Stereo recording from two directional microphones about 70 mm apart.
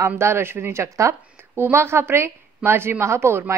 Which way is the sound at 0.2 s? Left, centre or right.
Right.